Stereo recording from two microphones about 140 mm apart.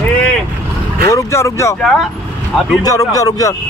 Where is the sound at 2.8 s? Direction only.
25° left (ahead or behind).